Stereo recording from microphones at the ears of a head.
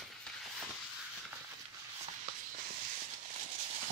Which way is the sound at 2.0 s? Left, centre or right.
Right.